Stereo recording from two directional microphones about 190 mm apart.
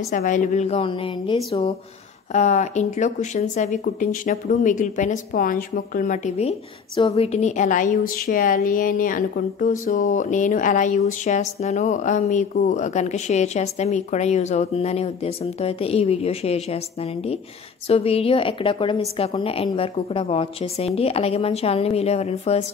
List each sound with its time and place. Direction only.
0.1 s a woman's voice: 45° left (ahead or behind)